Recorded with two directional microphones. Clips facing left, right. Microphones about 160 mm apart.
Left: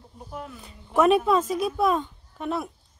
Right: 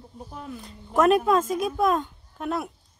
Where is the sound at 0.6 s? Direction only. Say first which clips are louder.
Even; centre (ahead or behind).